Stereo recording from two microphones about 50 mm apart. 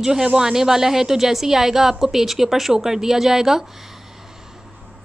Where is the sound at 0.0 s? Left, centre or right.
Centre.